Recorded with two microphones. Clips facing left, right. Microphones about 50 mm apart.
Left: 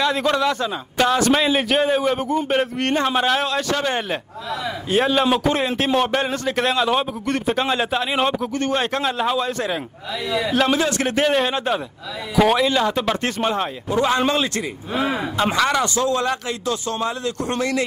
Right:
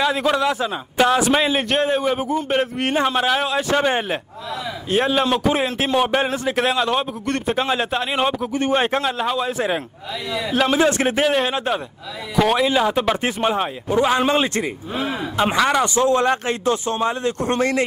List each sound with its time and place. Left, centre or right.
0.0 s a man's voice: centre
3.7 s speech: centre
4.8 s a man's voice: centre
8.5 s speech: centre
9.0 s speech: centre
10.8 s speech: right
11.1 s a man's voice: centre
12.6 s speech: centre
14.3 s speech: right
15.3 s speech: centre; by 17.8 s right